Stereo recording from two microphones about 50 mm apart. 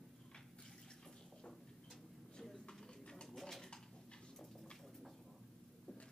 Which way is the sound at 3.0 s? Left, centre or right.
Centre.